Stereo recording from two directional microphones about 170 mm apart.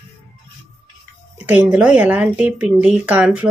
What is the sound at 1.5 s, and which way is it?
Speech, 10° right (ahead or behind).